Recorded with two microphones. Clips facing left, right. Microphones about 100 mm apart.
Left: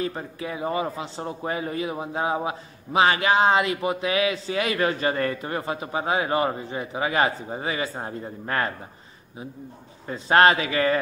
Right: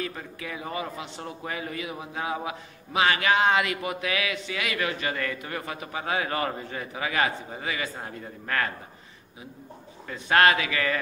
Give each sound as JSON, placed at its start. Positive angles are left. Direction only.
{"t": 0.0, "sound": "a man's voice", "side_deg": 30}
{"t": 10.0, "sound": "a man's voice", "side_deg": 30}